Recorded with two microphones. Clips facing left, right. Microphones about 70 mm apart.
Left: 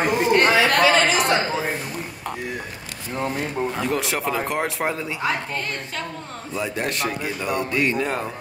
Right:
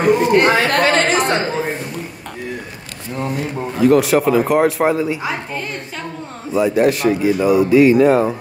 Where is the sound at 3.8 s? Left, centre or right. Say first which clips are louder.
Right 17 dB; centre.